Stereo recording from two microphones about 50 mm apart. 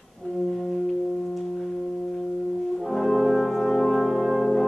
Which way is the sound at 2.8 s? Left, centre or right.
Centre.